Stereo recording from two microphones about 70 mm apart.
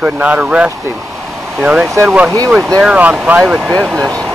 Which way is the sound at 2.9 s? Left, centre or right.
Right.